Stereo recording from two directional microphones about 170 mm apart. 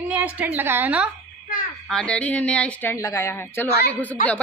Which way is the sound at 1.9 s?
5° left (ahead or behind).